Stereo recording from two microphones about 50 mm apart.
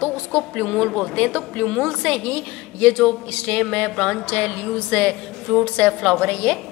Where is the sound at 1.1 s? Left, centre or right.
Left.